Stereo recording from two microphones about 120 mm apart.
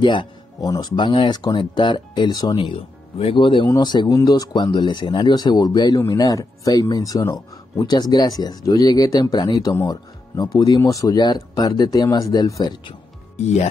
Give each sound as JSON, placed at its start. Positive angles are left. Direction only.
{"t": 0.0, "sound": "speech", "side_deg": 40}
{"t": 13.4, "sound": "speech", "side_deg": 65}